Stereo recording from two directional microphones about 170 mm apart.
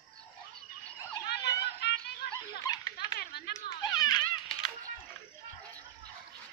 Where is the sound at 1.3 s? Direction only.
75° left (ahead or behind).